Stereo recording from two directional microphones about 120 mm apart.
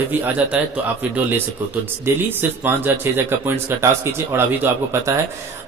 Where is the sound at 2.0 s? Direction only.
15° right (ahead or behind).